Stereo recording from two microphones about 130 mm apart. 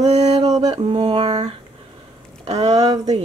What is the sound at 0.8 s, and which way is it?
Speech, 50° right (ahead or behind).